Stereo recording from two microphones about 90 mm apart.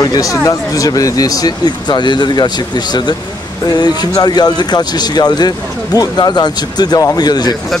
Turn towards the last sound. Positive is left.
turn(degrees=50)  # may be behind; listen again after turning